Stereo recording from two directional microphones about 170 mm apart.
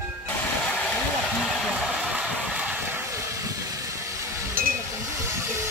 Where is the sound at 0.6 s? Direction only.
10° left (ahead or behind).